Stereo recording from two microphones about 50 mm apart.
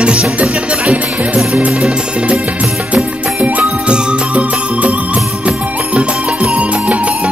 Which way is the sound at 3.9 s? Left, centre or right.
Right.